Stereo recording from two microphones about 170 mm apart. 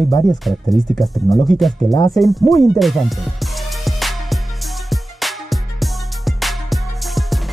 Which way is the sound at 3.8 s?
Centre (ahead or behind).